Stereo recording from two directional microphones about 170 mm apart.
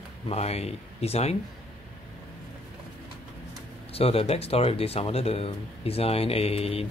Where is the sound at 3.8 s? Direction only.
35° left (ahead or behind).